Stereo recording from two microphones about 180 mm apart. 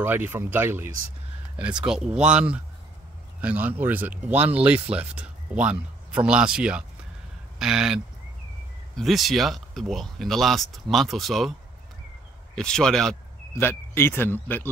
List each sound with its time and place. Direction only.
0.0 s speech: 10° right (ahead or behind)
12.5 s speech: 5° left (ahead or behind)